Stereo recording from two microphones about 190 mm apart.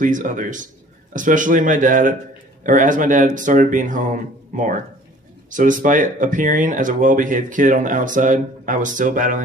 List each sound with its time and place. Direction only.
0.0 s speech: 45° right (ahead or behind)